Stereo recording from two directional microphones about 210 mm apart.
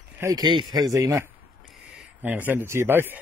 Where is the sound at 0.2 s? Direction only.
15° right (ahead or behind).